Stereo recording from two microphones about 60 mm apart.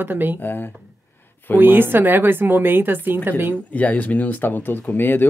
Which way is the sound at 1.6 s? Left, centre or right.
Right.